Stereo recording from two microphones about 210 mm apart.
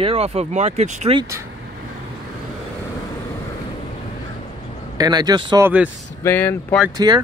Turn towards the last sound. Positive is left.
turn(degrees=-20)  # may be behind; listen again after turning